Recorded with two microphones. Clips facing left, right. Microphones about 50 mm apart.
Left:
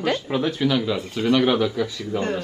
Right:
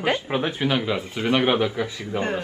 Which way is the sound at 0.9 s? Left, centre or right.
Centre.